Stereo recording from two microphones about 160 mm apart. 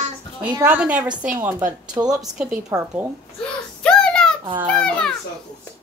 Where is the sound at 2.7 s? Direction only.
20° right (ahead or behind).